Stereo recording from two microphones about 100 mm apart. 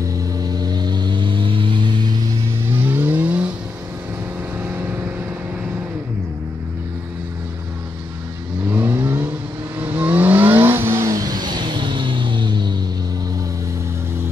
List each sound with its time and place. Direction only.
0.2 s vehicle: 40° right (ahead or behind)
2.8 s vehicle: 20° right (ahead or behind)
8.6 s vehicle: 20° right (ahead or behind)
11.1 s music: 40° right (ahead or behind)